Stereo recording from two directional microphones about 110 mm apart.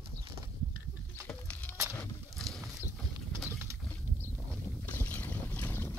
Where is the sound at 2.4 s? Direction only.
5° left (ahead or behind).